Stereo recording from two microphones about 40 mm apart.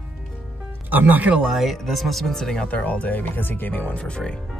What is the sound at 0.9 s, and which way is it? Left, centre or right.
Speech, right.